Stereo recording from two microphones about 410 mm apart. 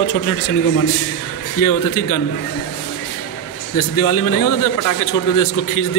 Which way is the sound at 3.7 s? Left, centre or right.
Left.